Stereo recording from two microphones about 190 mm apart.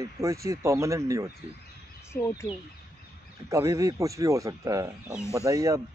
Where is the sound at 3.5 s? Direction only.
15° right (ahead or behind).